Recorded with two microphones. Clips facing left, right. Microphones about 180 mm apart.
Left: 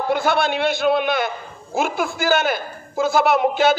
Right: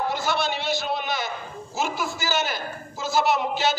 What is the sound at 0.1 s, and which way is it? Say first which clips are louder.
A man's voice: left 7 dB; 55° left (ahead or behind).